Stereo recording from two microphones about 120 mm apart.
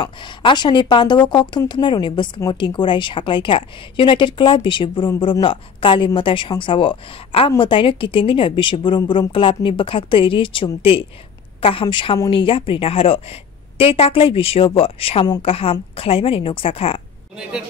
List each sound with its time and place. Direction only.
0.0 s a woman's voice: 40° left (ahead or behind)